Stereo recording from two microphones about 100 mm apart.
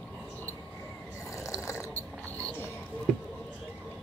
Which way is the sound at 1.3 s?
30° left (ahead or behind).